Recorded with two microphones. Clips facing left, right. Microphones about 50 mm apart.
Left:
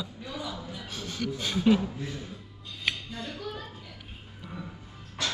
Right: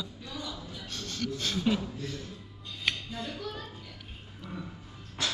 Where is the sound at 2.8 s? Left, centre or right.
Centre.